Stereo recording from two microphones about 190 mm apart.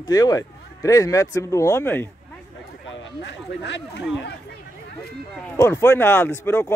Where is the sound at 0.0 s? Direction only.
20° left (ahead or behind).